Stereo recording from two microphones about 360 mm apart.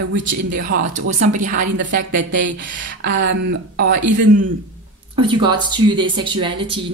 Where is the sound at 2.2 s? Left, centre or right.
Right.